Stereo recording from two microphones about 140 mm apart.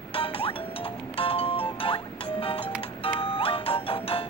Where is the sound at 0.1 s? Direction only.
40° left (ahead or behind).